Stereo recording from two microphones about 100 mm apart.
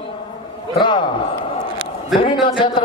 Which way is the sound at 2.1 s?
55° left (ahead or behind).